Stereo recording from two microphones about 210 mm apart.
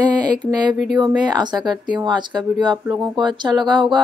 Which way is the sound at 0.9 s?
20° right (ahead or behind).